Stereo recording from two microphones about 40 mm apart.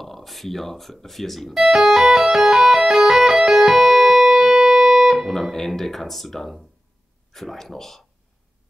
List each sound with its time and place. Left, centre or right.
0.0 s speech: centre
1.5 s music: centre
5.3 s speech: centre